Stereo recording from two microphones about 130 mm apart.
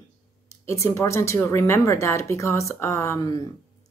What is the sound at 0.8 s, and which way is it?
Speech, 20° left (ahead or behind).